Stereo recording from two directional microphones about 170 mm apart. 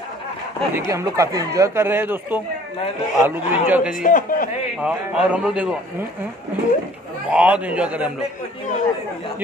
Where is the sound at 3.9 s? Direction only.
50° left (ahead or behind).